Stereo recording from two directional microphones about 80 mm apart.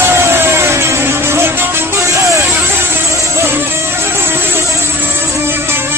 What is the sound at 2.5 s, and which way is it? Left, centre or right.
Music, right.